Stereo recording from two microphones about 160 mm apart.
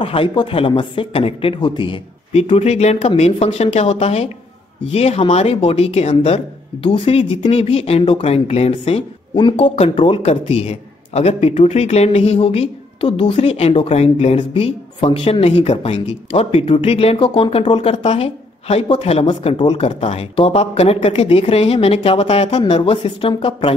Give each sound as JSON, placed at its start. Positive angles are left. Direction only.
{"t": 0.0, "sound": "a man's voice", "side_deg": 35}